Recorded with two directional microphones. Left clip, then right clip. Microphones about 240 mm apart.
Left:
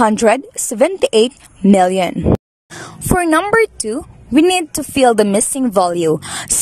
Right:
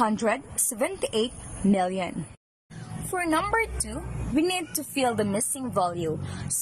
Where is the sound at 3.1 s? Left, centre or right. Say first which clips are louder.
Left 12 dB; left.